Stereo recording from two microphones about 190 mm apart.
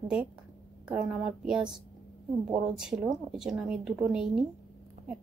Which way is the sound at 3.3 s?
Centre (ahead or behind).